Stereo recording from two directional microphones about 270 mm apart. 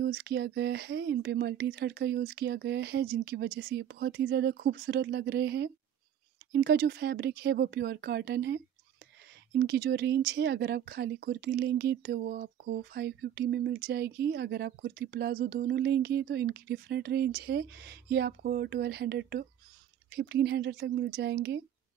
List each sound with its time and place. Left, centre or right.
0.0 s speech: right